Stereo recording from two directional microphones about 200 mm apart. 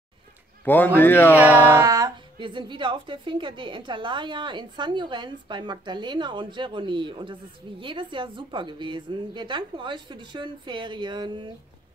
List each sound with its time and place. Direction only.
0.7 s a man's voice: 10° left (ahead or behind)
1.7 s a woman's voice: 15° right (ahead or behind)